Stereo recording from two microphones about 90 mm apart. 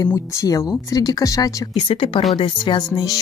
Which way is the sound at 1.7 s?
80° left.